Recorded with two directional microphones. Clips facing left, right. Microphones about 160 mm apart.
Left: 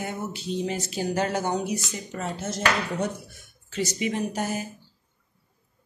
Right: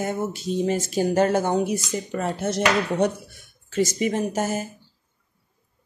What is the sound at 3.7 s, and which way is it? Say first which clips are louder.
Speech: right 5 dB; 45° right (ahead or behind).